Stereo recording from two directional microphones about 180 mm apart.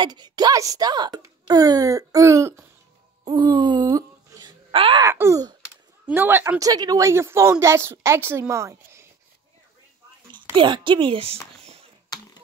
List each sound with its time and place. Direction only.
0.0 s speech: 25° right (ahead or behind)
3.3 s wail: 25° right (ahead or behind)
5.0 s a woman's voice: 15° right (ahead or behind)
10.3 s speech: 25° right (ahead or behind)